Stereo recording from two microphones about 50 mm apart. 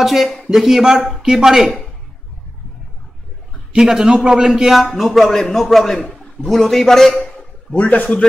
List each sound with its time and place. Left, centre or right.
0.0 s a man's voice: centre
3.7 s a man's voice: centre
5.9 s a man's voice: centre
6.4 s speech: centre
7.7 s a man's voice: left